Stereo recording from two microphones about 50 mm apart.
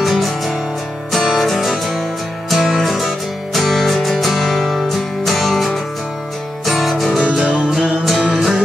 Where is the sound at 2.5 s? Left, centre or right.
Centre.